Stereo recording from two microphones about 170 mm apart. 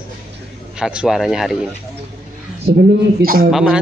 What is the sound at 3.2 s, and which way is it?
Speech, 55° right (ahead or behind).